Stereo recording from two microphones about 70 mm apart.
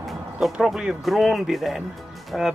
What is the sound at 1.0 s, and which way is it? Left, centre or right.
Speech, centre.